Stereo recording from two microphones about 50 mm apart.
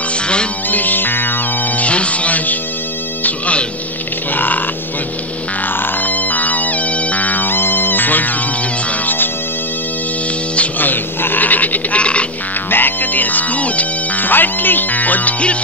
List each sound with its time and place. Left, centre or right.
0.7 s music: left
1.9 s music: left
4.3 s frog: left
5.8 s music: left
10.8 s frog: left
12.6 s music: left